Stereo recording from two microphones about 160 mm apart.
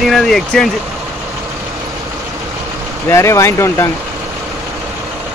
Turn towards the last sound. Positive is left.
turn(degrees=15)  # may be behind; listen again after turning